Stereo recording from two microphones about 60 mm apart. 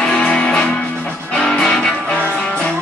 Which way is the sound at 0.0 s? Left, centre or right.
Centre.